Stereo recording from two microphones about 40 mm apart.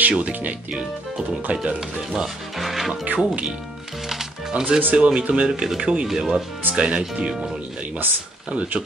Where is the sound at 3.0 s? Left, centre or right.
Right.